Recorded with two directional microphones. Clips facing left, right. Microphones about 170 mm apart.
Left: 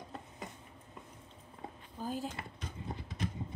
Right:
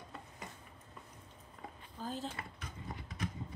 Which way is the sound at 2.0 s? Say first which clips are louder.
Left 3 dB; 10° left (ahead or behind).